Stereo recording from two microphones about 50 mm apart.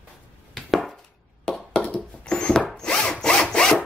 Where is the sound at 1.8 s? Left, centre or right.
Left.